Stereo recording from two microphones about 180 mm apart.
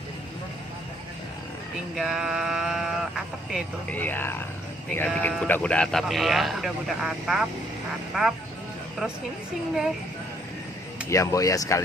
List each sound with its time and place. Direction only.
2.0 s a man's voice: 5° right (ahead or behind)
4.0 s a man's voice: 10° left (ahead or behind)
11.1 s speech: 15° left (ahead or behind)